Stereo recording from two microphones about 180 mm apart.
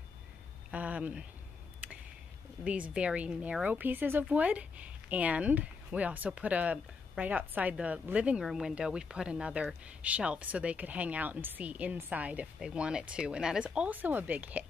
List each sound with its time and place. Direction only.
0.7 s speech: 10° right (ahead or behind)
2.6 s speech: 5° right (ahead or behind)